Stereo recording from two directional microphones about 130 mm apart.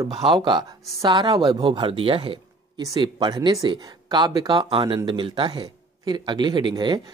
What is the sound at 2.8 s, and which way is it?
Speech, 30° right (ahead or behind).